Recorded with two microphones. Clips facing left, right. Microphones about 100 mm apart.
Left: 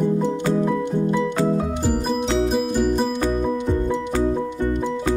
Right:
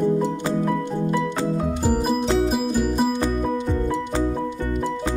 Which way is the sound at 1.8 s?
5° right (ahead or behind).